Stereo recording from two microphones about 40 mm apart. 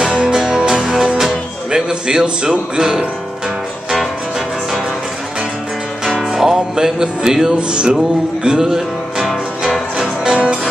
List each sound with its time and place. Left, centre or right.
0.0 s music: centre
1.7 s a man's voice: centre
2.7 s music: centre
6.3 s music: centre